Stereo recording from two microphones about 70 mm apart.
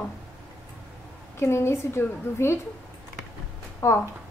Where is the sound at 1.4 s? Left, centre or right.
Left.